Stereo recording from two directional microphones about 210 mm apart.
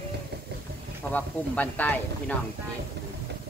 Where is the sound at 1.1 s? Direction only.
5° left (ahead or behind).